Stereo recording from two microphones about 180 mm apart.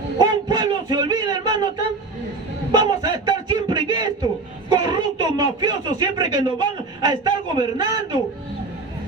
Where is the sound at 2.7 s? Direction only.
25° right (ahead or behind).